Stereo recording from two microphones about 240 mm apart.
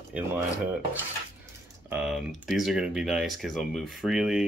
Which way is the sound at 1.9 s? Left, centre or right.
Centre.